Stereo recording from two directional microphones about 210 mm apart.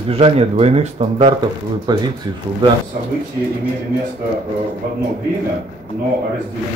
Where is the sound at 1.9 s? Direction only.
20° right (ahead or behind).